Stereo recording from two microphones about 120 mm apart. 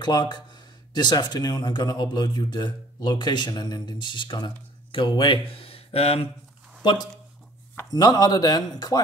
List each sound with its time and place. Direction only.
0.0 s speech: 35° left (ahead or behind); by 6.2 s 55° left (ahead or behind)
6.8 s speech: 40° left (ahead or behind)